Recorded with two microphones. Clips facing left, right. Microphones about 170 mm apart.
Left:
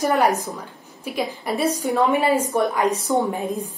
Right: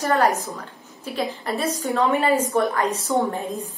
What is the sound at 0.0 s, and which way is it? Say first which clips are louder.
A woman's voice: left 1 dB; 15° left (ahead or behind).